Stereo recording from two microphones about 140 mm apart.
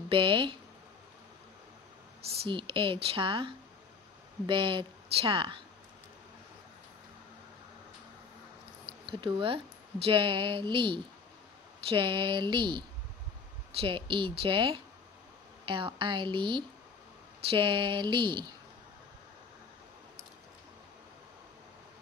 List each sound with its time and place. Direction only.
0.1 s speech: 40° right (ahead or behind)
2.4 s speech: 40° right (ahead or behind)
9.0 s speech: 40° right (ahead or behind)